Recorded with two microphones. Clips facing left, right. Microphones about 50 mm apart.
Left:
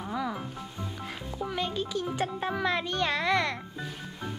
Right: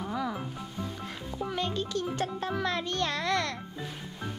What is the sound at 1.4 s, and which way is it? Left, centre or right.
A child's voice, centre.